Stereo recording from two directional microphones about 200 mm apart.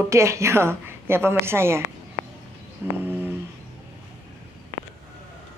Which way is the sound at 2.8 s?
10° right (ahead or behind).